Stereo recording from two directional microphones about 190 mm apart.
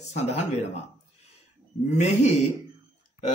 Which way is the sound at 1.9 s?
35° left (ahead or behind).